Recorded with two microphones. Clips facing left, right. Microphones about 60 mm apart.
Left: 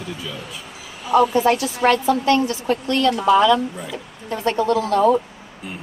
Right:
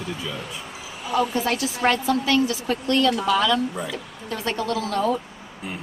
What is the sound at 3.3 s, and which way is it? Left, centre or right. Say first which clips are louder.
Speech: left 6 dB; centre.